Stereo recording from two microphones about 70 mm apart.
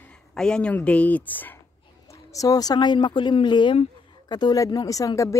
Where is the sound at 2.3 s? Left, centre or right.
Left.